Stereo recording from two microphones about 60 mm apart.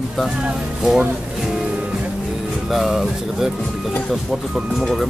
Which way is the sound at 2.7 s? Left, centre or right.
Centre.